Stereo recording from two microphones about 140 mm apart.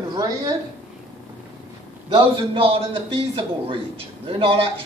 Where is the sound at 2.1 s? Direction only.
35° right (ahead or behind).